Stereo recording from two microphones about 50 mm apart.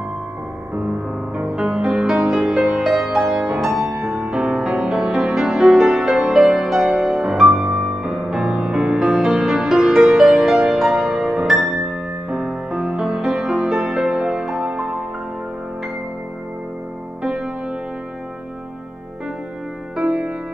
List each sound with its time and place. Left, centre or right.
0.7 s music: centre
17.2 s music: centre
20.0 s music: right